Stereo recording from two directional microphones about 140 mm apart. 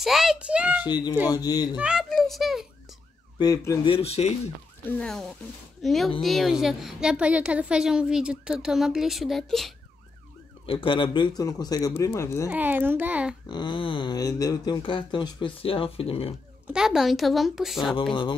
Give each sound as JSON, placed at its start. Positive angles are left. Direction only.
{"t": 0.0, "sound": "a child's voice", "side_deg": -5}
{"t": 0.8, "sound": "speech", "side_deg": 30}
{"t": 1.8, "sound": "a sound", "side_deg": -5}
{"t": 3.3, "sound": "speech", "side_deg": 25}
{"t": 3.8, "sound": "speech", "side_deg": 45}
{"t": 4.8, "sound": "a woman's voice", "side_deg": 5}
{"t": 10.7, "sound": "speech", "side_deg": 35}
{"t": 12.4, "sound": "a child's voice", "side_deg": -10}
{"t": 13.5, "sound": "speech", "side_deg": 35}
{"t": 16.6, "sound": "a woman's voice", "side_deg": -5}